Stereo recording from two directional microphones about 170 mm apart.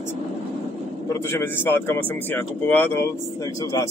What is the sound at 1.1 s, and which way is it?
Speech, 15° left (ahead or behind).